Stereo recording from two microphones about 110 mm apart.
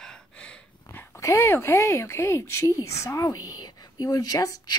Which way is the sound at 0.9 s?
25° left (ahead or behind).